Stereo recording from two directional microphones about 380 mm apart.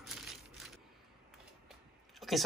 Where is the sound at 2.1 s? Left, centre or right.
Centre.